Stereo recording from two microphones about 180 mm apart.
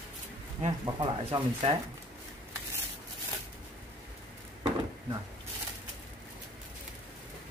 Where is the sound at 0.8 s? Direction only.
25° right (ahead or behind).